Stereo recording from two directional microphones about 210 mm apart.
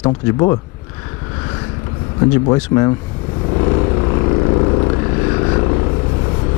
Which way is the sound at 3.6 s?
20° left (ahead or behind).